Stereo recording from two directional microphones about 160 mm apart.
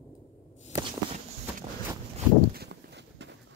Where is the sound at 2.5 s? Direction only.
85° right.